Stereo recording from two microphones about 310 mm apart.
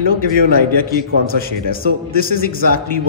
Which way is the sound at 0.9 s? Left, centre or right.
Left.